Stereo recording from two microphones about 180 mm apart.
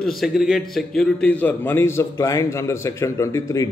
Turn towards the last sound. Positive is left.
turn(degrees=15)  # may be behind; listen again after turning